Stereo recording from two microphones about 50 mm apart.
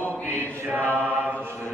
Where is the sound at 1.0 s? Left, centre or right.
Right.